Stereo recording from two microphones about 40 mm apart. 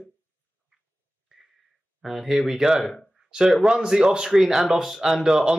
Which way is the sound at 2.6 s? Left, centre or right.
Centre.